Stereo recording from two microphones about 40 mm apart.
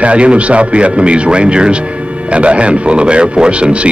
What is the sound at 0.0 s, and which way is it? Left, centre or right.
Speech, right.